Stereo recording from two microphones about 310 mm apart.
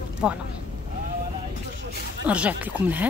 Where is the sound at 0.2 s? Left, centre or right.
Centre.